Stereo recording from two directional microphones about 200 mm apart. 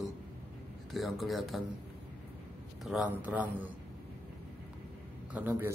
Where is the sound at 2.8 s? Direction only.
5° right (ahead or behind).